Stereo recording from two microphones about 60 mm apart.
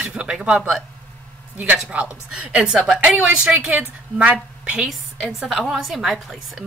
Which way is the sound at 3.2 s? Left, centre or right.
Right.